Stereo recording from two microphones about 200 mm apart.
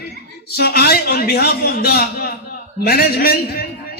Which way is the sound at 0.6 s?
50° left (ahead or behind).